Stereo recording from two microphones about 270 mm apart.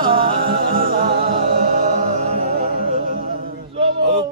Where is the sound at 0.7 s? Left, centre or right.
Right.